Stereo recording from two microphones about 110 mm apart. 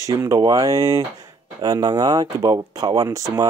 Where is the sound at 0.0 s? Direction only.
30° right (ahead or behind).